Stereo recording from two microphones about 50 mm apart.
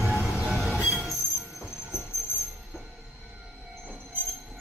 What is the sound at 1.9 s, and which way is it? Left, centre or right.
Train wheels squealing, left.